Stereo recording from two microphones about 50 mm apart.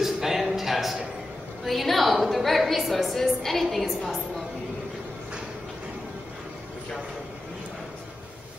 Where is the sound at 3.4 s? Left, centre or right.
Centre.